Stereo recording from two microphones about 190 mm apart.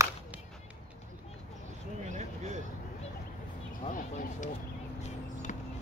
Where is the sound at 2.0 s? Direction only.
40° right (ahead or behind).